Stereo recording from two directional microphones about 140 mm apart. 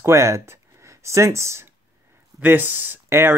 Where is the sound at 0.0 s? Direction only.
20° right (ahead or behind).